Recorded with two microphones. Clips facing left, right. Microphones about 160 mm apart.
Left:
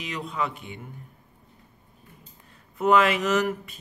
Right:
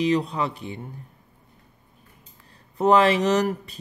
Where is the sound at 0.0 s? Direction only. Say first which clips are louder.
Right 8 dB; 35° right (ahead or behind).